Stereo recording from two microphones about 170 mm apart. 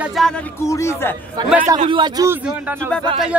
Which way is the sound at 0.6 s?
15° left (ahead or behind).